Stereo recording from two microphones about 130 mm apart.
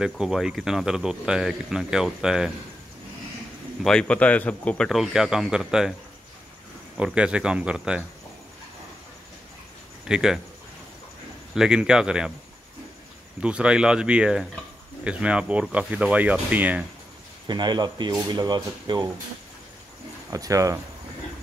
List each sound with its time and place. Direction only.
0.0 s speech: 5° right (ahead or behind)
3.8 s speech: 5° left (ahead or behind)
4.8 s speech: centre (ahead or behind)
7.0 s speech: 5° right (ahead or behind)
10.0 s speech: 5° right (ahead or behind)
11.5 s speech: 5° right (ahead or behind)
13.4 s speech: 10° right (ahead or behind)
17.5 s speech: 35° right (ahead or behind)
20.2 s speech: 25° right (ahead or behind)